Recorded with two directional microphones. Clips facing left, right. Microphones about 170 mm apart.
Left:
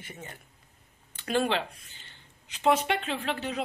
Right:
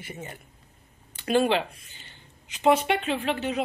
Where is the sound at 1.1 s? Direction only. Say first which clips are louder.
Right 5 dB; 10° right (ahead or behind).